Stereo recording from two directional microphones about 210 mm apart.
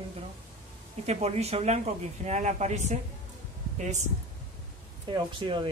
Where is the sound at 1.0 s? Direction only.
30° right (ahead or behind).